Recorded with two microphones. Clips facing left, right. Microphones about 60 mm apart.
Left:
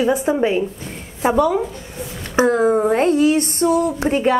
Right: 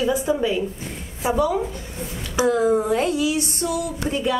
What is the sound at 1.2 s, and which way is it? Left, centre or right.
Speech, left.